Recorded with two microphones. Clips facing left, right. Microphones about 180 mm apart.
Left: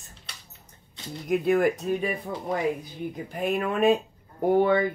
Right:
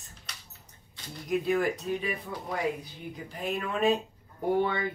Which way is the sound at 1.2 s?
55° left (ahead or behind).